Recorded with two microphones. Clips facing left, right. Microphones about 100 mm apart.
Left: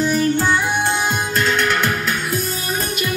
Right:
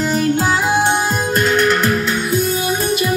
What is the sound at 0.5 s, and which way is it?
Music, 90° right.